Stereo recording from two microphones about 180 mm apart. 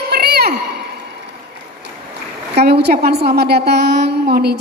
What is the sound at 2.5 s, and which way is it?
A woman's voice, 65° right (ahead or behind).